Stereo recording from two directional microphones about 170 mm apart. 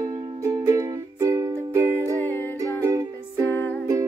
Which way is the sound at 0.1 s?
20° right (ahead or behind).